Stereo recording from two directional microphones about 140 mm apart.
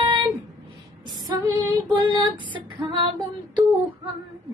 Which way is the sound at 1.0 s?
30° right (ahead or behind).